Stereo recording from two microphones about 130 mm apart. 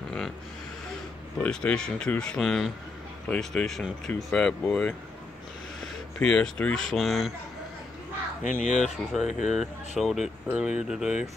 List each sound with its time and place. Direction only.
1.4 s speech: 10° left (ahead or behind)
6.1 s speech: 5° left (ahead or behind)
8.5 s speech: 75° left (ahead or behind)
8.9 s speech: centre (ahead or behind)